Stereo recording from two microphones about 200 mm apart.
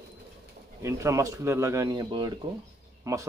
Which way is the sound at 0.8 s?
15° right (ahead or behind).